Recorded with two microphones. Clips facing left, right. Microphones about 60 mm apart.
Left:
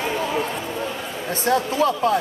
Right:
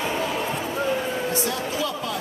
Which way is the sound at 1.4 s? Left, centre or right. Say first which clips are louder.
Left 7 dB; left.